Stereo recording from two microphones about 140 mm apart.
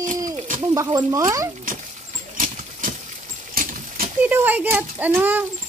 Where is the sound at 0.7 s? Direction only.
25° right (ahead or behind).